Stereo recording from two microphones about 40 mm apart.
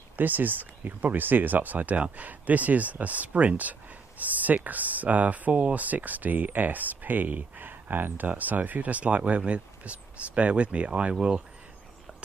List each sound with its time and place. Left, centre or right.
0.1 s speech: right
8.3 s speech: right